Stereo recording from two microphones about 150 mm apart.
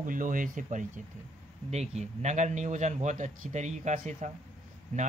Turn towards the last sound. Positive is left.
turn(degrees=-55)  # may be behind; listen again after turning